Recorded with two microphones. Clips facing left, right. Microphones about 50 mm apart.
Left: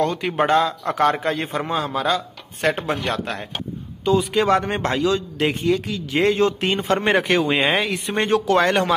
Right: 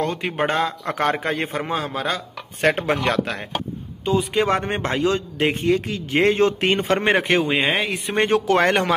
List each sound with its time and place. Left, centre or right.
0.0 s a man's voice: right
0.5 s a man's voice: right
4.0 s a man's voice: centre; by 7.2 s right
7.2 s speech: right
7.4 s speech: centre
8.2 s a man's voice: right